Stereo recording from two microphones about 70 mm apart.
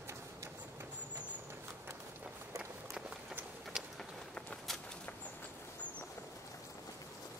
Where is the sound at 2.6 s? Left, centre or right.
Centre.